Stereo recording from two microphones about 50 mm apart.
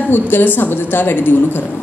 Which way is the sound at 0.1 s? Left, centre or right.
Left.